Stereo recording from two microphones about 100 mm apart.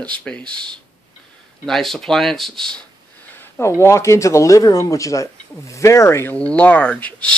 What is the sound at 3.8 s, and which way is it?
Speech, 30° left (ahead or behind).